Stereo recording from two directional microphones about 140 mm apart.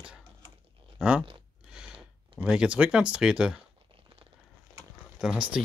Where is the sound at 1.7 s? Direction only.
5° right (ahead or behind).